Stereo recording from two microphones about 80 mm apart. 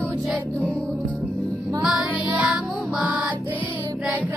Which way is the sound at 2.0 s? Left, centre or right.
Centre.